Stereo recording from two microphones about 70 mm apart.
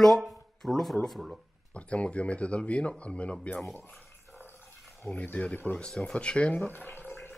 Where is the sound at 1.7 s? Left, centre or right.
Centre.